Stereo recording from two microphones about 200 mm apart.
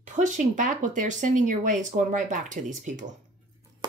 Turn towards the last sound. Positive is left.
turn(degrees=-20)  # may be behind; listen again after turning